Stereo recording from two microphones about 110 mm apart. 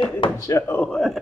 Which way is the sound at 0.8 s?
5° left (ahead or behind).